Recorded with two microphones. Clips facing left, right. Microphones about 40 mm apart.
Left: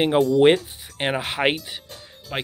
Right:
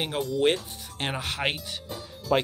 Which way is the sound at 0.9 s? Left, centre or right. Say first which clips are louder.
Left 6 dB; left.